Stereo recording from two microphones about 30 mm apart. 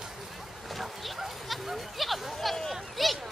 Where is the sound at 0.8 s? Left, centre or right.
Centre.